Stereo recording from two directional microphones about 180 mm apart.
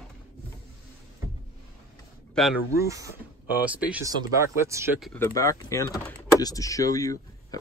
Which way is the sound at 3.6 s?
10° right (ahead or behind).